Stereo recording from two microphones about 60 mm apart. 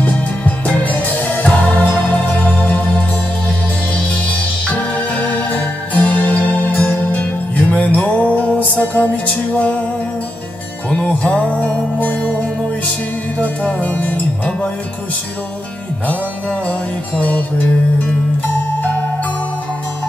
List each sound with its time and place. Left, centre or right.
0.0 s music: left
3.9 s music: left
10.9 s music: centre
13.4 s music: left
16.1 s music: left
18.5 s music: left